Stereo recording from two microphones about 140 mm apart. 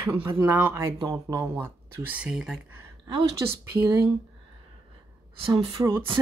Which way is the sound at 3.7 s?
20° right (ahead or behind).